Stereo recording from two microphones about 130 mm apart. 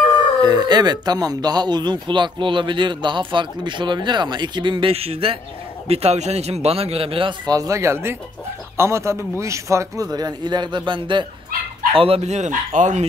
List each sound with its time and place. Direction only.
0.4 s a man's voice: 35° right (ahead or behind); by 13.0 s 70° right (ahead or behind)